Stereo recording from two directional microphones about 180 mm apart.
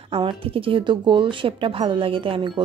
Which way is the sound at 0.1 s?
30° right (ahead or behind).